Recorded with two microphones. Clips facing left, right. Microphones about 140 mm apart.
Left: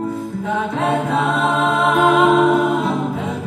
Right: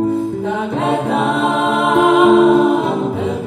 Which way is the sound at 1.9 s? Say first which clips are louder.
Right 5 dB; 25° right (ahead or behind).